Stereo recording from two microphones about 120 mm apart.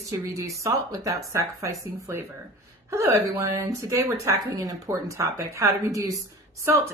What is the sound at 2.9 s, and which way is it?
Speech, 25° right (ahead or behind).